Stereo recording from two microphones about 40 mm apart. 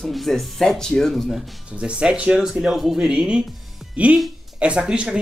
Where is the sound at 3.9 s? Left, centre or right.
Right.